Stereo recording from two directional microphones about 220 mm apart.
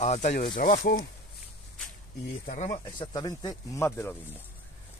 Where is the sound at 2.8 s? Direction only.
20° left (ahead or behind).